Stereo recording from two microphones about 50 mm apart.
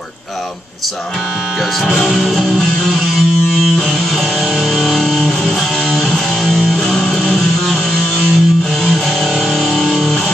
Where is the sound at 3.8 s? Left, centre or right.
Centre.